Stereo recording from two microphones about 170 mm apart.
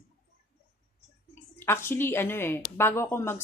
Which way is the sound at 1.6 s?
15° left (ahead or behind).